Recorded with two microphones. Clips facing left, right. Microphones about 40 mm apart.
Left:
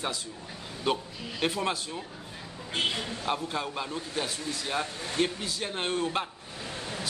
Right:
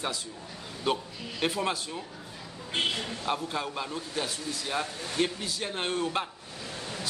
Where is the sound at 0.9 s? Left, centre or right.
Centre.